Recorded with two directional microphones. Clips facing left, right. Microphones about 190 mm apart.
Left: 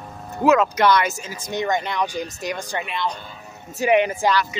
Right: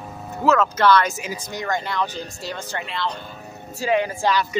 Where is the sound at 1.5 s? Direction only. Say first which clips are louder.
Left 4 dB; 20° left (ahead or behind).